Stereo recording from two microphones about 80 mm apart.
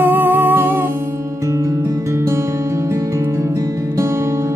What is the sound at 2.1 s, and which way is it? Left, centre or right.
Music, right.